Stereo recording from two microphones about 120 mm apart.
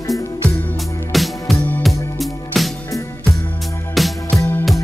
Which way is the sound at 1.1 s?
Centre (ahead or behind).